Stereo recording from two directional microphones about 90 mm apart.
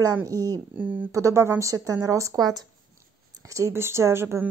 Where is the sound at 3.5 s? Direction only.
30° right (ahead or behind).